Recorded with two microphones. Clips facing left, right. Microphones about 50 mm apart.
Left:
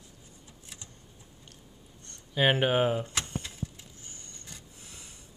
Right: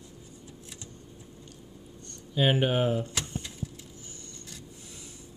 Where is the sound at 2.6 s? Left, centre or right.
Left.